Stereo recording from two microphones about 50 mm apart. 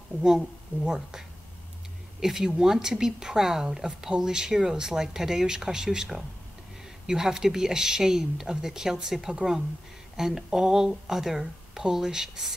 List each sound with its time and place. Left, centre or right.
0.2 s a woman's voice: centre